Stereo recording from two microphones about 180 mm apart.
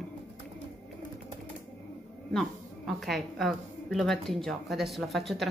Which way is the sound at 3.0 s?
Centre (ahead or behind).